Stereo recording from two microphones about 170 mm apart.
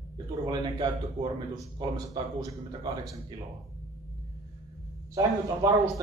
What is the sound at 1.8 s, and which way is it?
A man's voice, 25° right (ahead or behind).